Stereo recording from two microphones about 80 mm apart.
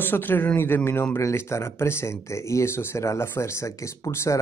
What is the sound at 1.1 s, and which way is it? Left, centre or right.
Speech, left.